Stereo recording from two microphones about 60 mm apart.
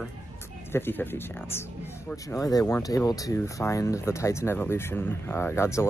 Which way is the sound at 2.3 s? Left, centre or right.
Left.